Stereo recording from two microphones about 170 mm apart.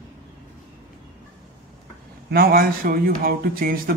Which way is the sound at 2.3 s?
65° right (ahead or behind).